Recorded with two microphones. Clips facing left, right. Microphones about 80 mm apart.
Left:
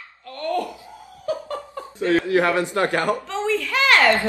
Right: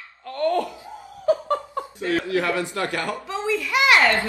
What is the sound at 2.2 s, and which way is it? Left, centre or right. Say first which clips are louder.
Speech: left 4 dB; left.